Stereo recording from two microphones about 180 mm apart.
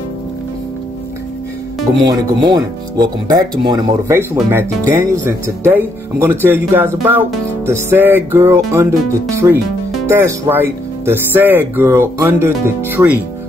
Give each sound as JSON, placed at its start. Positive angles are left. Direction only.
{"t": 2.0, "sound": "speech", "side_deg": -20}